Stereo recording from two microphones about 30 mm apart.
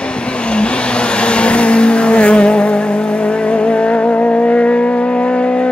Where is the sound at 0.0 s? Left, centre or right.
Left.